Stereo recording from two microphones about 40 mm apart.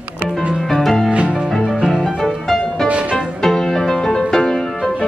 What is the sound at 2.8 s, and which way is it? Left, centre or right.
Music, right.